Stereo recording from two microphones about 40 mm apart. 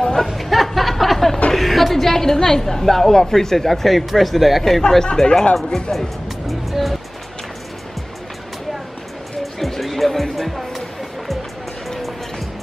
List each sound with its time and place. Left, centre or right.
0.0 s a sound: centre
0.4 s chuckle: centre
1.5 s a woman's voice: centre
4.8 s speech: centre
5.9 s music: centre
9.4 s music: centre